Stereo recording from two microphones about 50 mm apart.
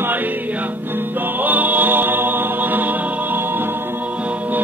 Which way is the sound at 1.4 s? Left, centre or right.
Right.